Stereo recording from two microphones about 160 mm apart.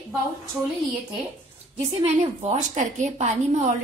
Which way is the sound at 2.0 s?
45° right (ahead or behind).